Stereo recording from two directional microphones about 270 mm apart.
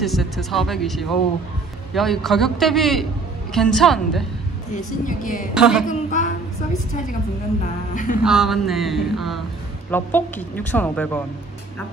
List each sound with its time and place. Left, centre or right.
0.0 s speech: centre
4.7 s speech: left
5.5 s speech: centre
5.9 s a sound: left
7.9 s speech: left
8.2 s speech: centre